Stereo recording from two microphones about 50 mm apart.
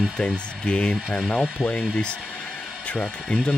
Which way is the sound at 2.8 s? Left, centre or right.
Left.